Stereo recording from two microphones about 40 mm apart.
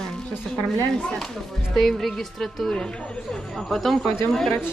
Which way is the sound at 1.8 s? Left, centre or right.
Centre.